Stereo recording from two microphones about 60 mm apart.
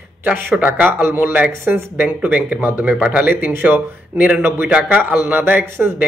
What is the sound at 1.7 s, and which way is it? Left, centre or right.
Speech, right.